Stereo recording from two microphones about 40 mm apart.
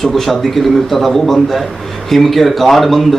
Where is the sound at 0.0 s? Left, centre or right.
Centre.